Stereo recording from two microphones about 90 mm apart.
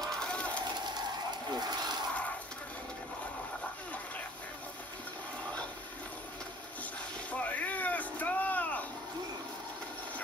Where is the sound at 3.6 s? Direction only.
15° left (ahead or behind).